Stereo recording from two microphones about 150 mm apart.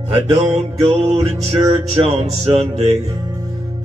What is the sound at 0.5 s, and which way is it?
Mantra, 45° right (ahead or behind).